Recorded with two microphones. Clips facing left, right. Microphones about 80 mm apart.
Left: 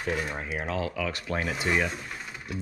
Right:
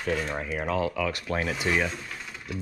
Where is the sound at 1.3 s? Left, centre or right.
Right.